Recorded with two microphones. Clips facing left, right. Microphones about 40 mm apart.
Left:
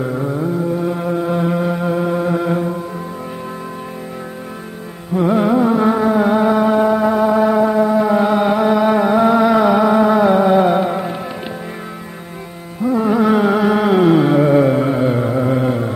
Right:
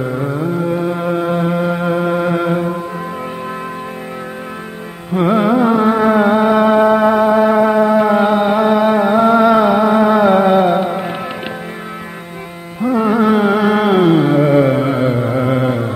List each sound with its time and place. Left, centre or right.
0.0 s a sound: right
0.6 s music: right
1.3 s music: right
5.3 s music: right
6.2 s music: right
7.6 s music: right
8.4 s music: centre
8.9 s a sound: centre
10.6 s music: centre
12.8 s carnatic music: right
13.1 s carnatic music: centre
14.5 s carnatic music: right
15.0 s music: centre
15.3 s mantra: right